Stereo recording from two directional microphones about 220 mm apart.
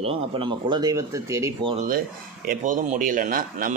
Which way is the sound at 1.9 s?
40° right (ahead or behind).